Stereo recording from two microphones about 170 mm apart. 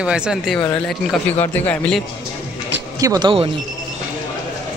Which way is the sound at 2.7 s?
20° right (ahead or behind).